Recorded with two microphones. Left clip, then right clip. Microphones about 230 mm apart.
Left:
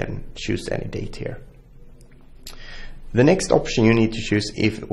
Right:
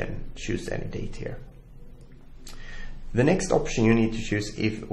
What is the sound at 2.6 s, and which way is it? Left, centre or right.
Speech, left.